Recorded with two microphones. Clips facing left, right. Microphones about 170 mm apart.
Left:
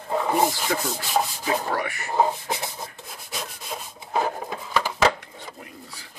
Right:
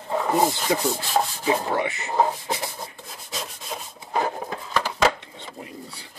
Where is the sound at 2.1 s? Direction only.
10° left (ahead or behind).